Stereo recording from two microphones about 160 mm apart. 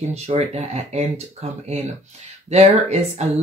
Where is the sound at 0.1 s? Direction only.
40° right (ahead or behind).